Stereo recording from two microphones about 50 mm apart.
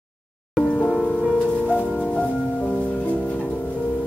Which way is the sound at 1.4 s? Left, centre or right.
Left.